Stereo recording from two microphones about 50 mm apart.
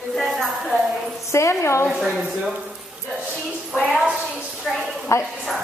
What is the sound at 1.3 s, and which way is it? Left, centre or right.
Speech, left.